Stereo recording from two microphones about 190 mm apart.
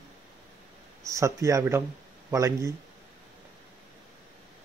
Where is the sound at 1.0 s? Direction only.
15° right (ahead or behind).